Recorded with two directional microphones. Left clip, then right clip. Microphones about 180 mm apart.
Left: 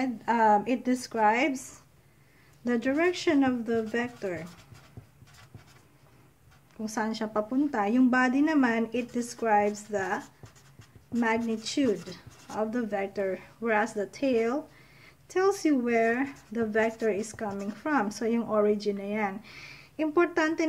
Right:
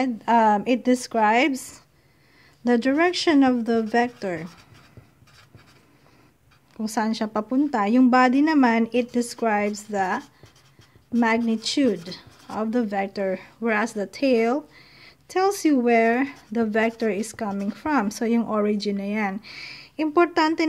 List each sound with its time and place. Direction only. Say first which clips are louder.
0.0 s a woman's voice: right 6 dB; 35° right (ahead or behind)
2.6 s a woman's voice: right 6 dB; 45° right (ahead or behind)
6.8 s a woman's voice: right 6 dB; 40° right (ahead or behind)